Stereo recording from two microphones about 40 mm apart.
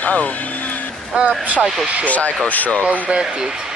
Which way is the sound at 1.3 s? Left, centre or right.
Right.